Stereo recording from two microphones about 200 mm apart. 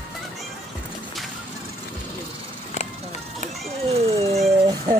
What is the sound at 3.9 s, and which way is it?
Cat, 30° right (ahead or behind).